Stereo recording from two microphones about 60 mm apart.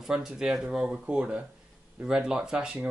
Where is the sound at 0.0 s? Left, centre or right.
Centre.